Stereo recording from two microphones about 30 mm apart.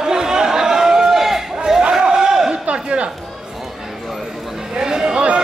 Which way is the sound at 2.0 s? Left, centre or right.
Centre.